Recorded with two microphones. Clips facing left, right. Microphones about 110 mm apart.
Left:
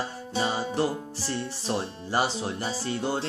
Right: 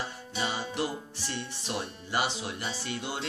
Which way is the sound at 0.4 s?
35° left (ahead or behind).